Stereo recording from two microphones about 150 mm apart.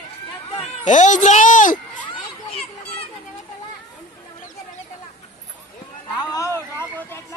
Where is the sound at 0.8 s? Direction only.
55° left (ahead or behind).